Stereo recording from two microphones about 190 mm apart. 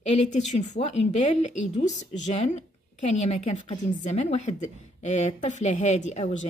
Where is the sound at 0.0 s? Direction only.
35° left (ahead or behind).